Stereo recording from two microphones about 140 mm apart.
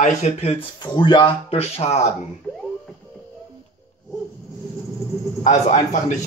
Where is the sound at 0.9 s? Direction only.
35° left (ahead or behind).